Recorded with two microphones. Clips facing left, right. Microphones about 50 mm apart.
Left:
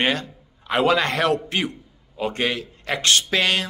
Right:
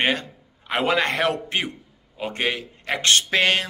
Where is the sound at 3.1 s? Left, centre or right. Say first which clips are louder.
Right 1 dB; right.